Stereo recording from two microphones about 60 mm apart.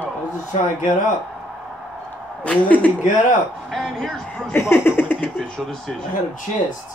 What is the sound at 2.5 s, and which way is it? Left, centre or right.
Speech, left.